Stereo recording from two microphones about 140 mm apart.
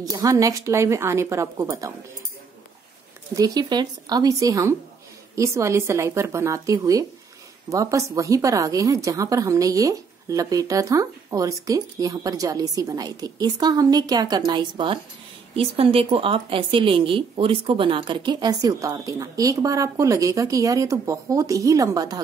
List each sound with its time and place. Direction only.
0.0 s a woman's voice: 25° right (ahead or behind)
3.3 s a woman's voice: 25° right (ahead or behind)